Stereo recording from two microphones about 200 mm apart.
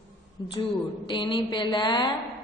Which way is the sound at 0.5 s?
25° left (ahead or behind).